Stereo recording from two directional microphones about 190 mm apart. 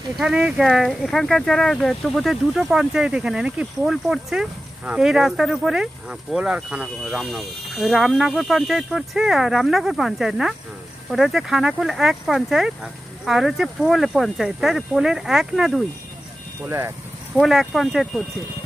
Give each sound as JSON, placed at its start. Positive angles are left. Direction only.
{"t": 0.1, "sound": "speech", "side_deg": -5}
{"t": 16.6, "sound": "speech", "side_deg": -15}
{"t": 17.4, "sound": "speech", "side_deg": 0}